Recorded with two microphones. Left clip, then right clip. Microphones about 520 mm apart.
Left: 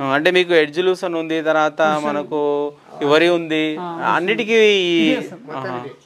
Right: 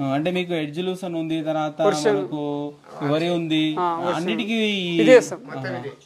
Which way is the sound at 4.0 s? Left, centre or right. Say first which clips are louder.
Left 7 dB; left.